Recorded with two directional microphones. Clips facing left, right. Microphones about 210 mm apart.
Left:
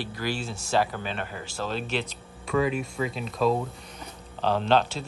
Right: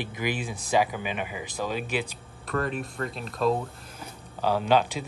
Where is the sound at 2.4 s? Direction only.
Centre (ahead or behind).